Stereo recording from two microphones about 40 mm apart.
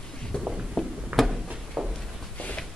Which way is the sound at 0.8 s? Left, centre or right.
Centre.